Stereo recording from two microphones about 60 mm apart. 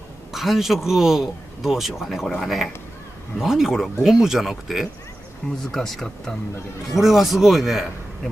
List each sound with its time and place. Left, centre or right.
0.3 s a man's voice: centre
5.7 s speech: centre
6.9 s a man's voice: centre